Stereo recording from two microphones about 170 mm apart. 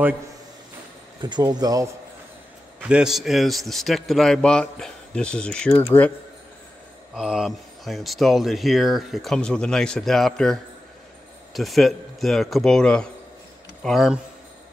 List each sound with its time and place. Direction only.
1.2 s speech: 25° right (ahead or behind)
2.8 s speech: 5° right (ahead or behind); by 6.1 s 10° left (ahead or behind)
7.2 s speech: 5° right (ahead or behind)